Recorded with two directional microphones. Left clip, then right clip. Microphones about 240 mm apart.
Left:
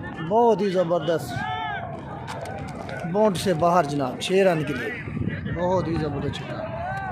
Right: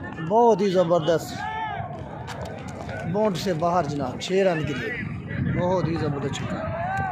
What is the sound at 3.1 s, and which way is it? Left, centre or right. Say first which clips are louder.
A man's voice: left 3 dB; centre.